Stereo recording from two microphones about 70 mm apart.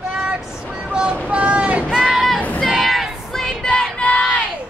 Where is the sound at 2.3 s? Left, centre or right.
Centre.